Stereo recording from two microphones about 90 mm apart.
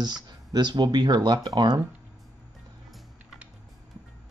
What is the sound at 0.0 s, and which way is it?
Speech, 50° right (ahead or behind).